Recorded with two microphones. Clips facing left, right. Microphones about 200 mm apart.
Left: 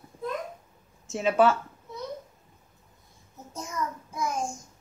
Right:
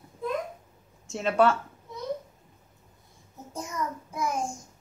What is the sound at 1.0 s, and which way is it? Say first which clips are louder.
Speech: left 1 dB; 5° left (ahead or behind).